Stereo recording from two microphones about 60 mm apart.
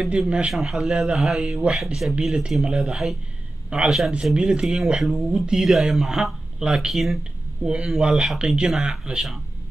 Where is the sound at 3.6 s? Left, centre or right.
Centre.